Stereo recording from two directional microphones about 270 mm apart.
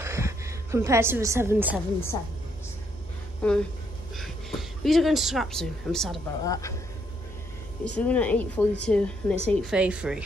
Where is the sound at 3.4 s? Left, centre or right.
Centre.